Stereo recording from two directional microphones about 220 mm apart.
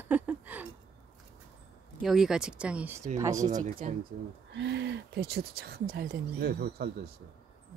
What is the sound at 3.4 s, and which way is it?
Speech, 35° right (ahead or behind).